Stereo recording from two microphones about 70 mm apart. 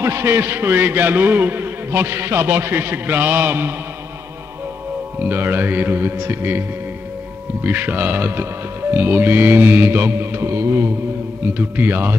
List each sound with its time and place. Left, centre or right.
0.0 s a man's voice: right
5.2 s mantra: right
7.6 s mantra: right
11.5 s a man's voice: right